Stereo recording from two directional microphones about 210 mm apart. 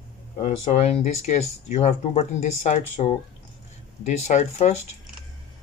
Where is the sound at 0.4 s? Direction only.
30° left (ahead or behind).